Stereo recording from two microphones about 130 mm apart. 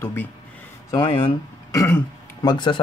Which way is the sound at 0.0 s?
15° left (ahead or behind).